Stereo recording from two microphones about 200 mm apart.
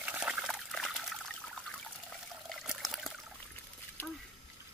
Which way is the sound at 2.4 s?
Centre (ahead or behind).